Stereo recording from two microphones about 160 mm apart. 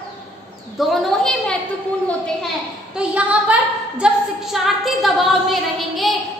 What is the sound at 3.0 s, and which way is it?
A woman's voice, 5° right (ahead or behind).